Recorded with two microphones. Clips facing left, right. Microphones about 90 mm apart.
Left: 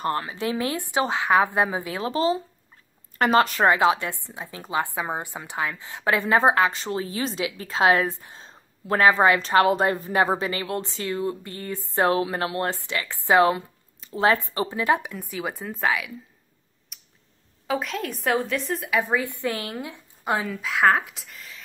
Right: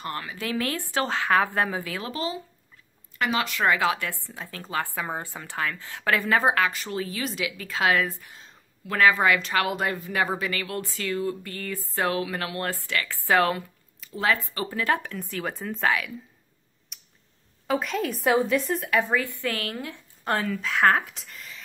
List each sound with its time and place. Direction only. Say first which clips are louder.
0.0 s a woman's voice: left 6 dB; 30° left (ahead or behind)
3.7 s speech: left 4 dB; 25° left (ahead or behind); by 16.1 s 5° left (ahead or behind)
16.9 s a sound: even; centre (ahead or behind)
17.6 s a woman's voice: right 1 dB; centre (ahead or behind)
19.0 s a woman's voice: left 1 dB; 20° left (ahead or behind); by 21.5 s centre (ahead or behind)